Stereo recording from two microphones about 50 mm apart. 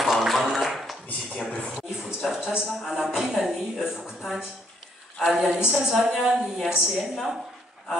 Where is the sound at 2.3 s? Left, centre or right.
Centre.